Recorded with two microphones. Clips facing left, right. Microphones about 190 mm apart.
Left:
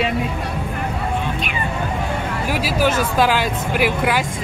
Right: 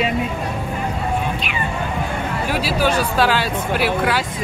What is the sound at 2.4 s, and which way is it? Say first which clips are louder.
Speech: left 1 dB; 10° left (ahead or behind).